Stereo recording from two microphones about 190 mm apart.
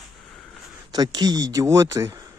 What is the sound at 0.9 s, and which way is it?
Speech, 20° right (ahead or behind).